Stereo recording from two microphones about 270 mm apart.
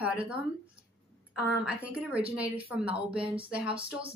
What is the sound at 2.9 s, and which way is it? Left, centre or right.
Speech, right.